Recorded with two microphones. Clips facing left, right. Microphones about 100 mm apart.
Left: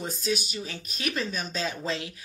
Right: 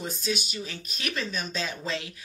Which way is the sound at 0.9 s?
35° left (ahead or behind).